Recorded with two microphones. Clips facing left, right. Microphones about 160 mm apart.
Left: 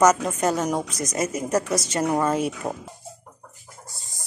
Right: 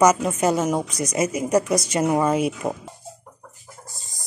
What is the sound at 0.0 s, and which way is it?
Speech, 10° right (ahead or behind).